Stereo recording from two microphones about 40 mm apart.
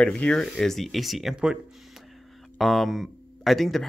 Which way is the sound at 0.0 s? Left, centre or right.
Left.